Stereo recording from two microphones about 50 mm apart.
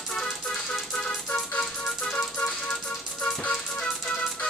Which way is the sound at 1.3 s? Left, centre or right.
Left.